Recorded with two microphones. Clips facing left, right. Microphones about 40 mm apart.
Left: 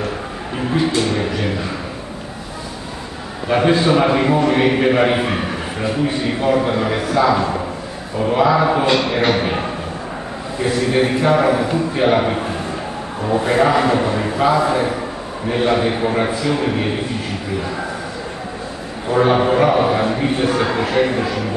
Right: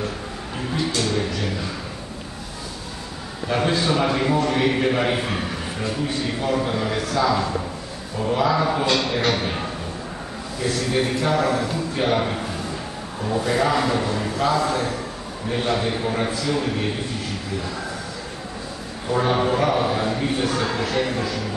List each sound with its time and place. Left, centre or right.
0.6 s a man's voice: left
3.4 s a man's voice: left
19.0 s a man's voice: left